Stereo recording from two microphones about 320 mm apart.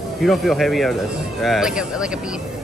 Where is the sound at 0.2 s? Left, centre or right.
Centre.